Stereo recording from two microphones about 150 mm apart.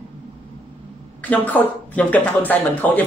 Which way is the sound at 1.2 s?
10° left (ahead or behind).